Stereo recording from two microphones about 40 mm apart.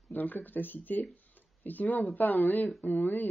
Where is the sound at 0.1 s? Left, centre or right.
Left.